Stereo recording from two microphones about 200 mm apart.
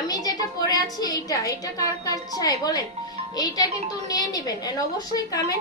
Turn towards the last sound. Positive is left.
turn(degrees=20)  # may be behind; listen again after turning